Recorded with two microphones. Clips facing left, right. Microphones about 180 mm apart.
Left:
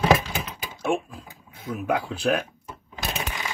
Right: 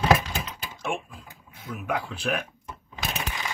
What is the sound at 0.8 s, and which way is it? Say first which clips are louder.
Speech: left 6 dB; 35° left (ahead or behind).